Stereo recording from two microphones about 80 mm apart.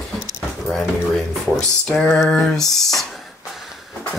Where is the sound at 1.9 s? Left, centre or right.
Centre.